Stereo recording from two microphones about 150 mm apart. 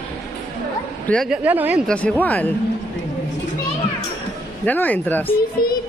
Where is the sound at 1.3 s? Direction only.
10° right (ahead or behind).